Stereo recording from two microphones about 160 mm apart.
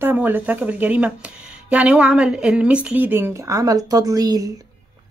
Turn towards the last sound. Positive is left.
turn(degrees=-25)  # may be behind; listen again after turning